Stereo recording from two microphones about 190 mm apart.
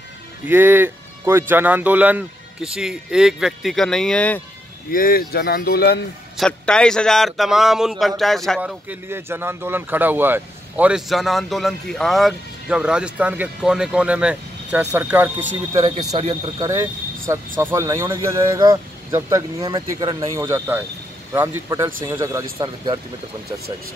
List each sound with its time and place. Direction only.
0.5 s speech: 10° right (ahead or behind); by 4.4 s 5° left (ahead or behind)
4.9 s speech: 50° left (ahead or behind)
6.3 s speech: 5° left (ahead or behind)
15.7 s speech: 20° right (ahead or behind)
17.3 s speech: 15° right (ahead or behind)